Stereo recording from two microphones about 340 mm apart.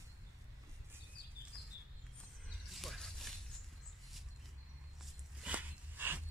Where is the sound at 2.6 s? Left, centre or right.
Centre.